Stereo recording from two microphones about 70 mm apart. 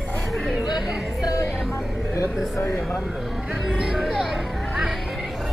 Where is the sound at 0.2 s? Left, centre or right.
Centre.